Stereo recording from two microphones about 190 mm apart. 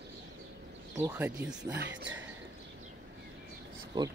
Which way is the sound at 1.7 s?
60° right (ahead or behind).